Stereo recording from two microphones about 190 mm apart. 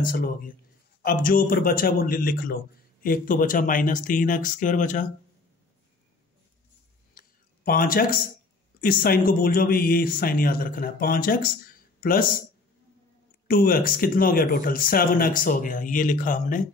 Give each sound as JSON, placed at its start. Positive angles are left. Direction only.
{"t": 0.0, "sound": "a man's voice", "side_deg": 45}
{"t": 7.2, "sound": "a sound", "side_deg": 50}
{"t": 8.8, "sound": "a man's voice", "side_deg": 50}
{"t": 13.5, "sound": "a man's voice", "side_deg": 50}